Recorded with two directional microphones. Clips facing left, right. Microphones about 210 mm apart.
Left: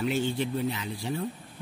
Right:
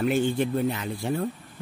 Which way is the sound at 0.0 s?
50° right (ahead or behind).